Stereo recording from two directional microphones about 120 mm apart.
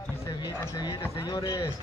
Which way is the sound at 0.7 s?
35° left (ahead or behind).